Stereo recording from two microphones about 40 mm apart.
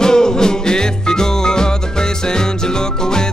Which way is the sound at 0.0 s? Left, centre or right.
Centre.